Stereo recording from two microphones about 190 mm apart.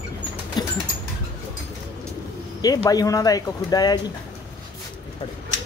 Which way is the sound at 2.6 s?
20° left (ahead or behind).